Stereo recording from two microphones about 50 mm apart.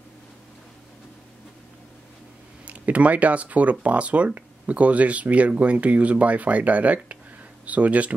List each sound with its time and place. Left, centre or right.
2.6 s speech: right